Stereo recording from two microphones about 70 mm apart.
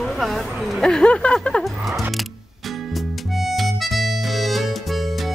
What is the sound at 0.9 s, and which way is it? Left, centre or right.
Speech, centre.